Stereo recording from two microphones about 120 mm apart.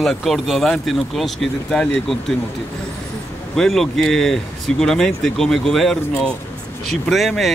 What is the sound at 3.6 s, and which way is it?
Speech, 5° left (ahead or behind).